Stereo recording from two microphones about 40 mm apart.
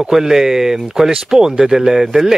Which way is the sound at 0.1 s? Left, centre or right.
Centre.